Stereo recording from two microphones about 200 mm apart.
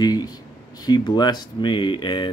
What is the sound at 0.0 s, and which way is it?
Speech, 20° left (ahead or behind).